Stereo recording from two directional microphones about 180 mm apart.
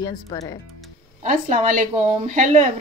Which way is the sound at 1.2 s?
45° right (ahead or behind).